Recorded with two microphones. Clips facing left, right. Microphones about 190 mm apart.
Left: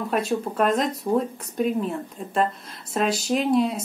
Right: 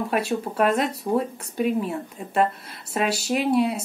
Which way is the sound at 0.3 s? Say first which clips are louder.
Left 1 dB; 5° right (ahead or behind).